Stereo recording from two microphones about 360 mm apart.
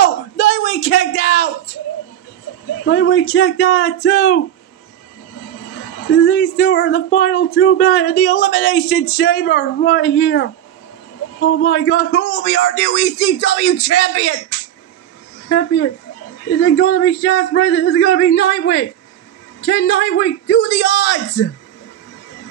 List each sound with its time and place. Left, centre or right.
0.0 s a sound: left
2.8 s speech: left
6.1 s speech: left
15.4 s speech: left